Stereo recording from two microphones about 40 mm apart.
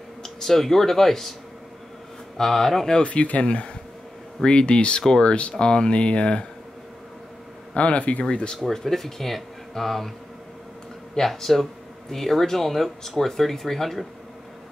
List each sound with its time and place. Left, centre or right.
0.2 s speech: centre
2.3 s speech: centre
2.9 s speech: left
7.7 s speech: left
8.5 s speech: centre
11.1 s speech: centre